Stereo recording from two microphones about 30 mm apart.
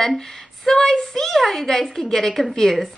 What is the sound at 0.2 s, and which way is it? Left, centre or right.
A woman's voice, centre.